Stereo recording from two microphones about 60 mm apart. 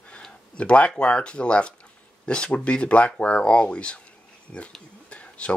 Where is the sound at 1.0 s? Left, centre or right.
Centre.